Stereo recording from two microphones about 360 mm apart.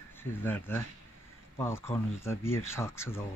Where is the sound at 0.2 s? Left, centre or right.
Centre.